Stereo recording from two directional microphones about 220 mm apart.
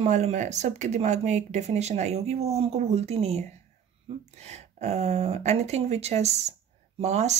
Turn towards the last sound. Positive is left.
turn(degrees=-30)  # may be behind; listen again after turning